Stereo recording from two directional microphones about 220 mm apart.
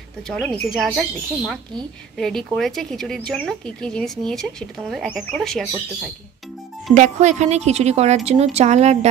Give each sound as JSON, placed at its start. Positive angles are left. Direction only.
{"t": 0.3, "sound": "speech", "side_deg": 0}
{"t": 6.9, "sound": "a woman's voice", "side_deg": -35}